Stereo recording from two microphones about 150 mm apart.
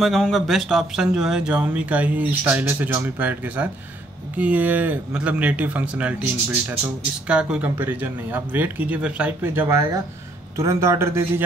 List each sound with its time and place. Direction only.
0.0 s speech: centre (ahead or behind)
7.2 s speech: 5° right (ahead or behind)